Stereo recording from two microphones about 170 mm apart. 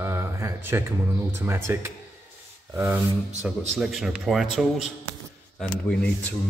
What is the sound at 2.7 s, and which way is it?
Rub, 15° right (ahead or behind).